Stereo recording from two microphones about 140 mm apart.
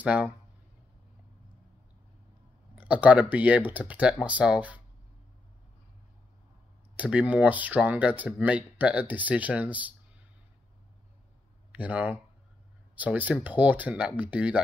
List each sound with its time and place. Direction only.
0.0 s speech: 10° right (ahead or behind)
2.8 s speech: 10° right (ahead or behind)
7.0 s speech: 10° right (ahead or behind)
11.7 s speech: 10° right (ahead or behind)